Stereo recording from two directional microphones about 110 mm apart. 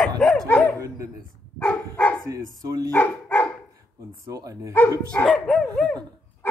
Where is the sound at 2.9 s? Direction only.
15° left (ahead or behind).